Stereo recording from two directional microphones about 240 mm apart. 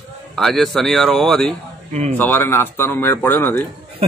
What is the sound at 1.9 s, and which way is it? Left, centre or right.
Speech, right.